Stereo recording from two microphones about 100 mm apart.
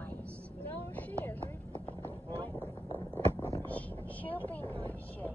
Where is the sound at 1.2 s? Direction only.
20° left (ahead or behind).